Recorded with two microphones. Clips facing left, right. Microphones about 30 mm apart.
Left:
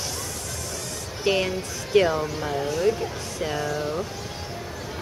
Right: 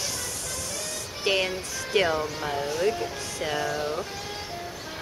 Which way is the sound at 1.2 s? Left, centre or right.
Centre.